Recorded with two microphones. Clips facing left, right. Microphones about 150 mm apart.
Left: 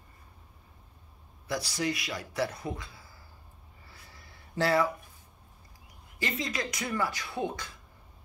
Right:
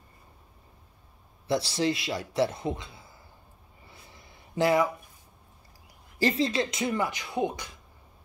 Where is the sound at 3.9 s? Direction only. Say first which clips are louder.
Right 3 dB; 20° right (ahead or behind).